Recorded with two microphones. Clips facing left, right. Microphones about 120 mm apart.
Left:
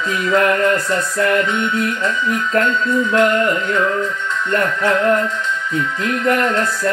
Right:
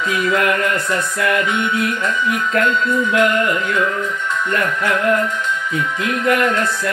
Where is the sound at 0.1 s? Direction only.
30° left (ahead or behind).